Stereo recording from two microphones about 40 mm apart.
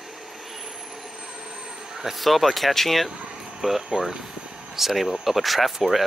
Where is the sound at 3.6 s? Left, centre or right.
Centre.